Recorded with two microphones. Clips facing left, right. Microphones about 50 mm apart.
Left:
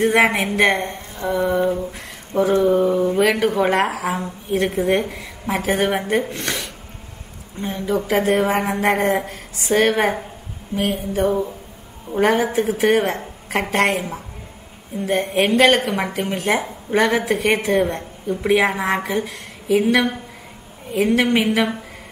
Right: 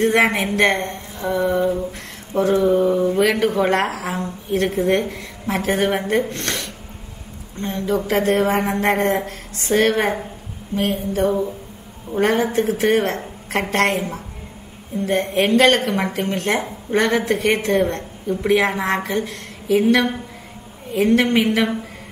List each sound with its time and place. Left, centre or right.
0.0 s a woman's voice: centre
1.8 s a sound: centre
2.6 s a woman's voice: centre